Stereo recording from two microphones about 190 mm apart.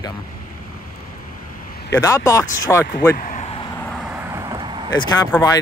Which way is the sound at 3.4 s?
30° left (ahead or behind).